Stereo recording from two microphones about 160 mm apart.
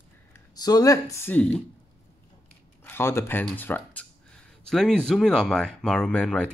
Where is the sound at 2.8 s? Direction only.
15° left (ahead or behind).